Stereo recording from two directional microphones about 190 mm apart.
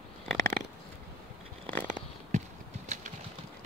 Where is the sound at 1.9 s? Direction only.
40° right (ahead or behind).